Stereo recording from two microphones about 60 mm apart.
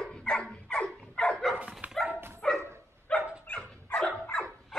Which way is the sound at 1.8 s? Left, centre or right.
Right.